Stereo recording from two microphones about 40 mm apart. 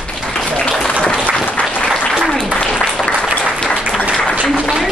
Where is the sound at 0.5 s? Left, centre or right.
Left.